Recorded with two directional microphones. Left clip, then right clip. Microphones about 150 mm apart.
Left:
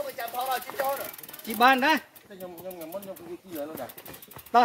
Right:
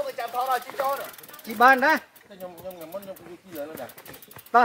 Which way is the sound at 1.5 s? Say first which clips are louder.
Right 3 dB; 35° right (ahead or behind).